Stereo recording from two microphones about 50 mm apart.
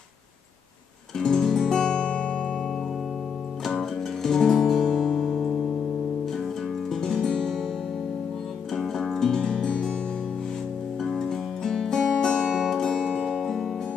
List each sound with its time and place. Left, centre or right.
1.1 s music: centre
3.6 s music: centre
7.0 s music: centre
8.7 s music: centre
11.0 s music: centre
13.4 s music: centre